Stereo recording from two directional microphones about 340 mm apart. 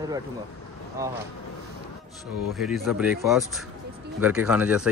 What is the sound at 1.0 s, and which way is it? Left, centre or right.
Speech, centre.